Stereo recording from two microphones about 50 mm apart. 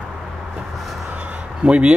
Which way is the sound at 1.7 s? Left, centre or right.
Right.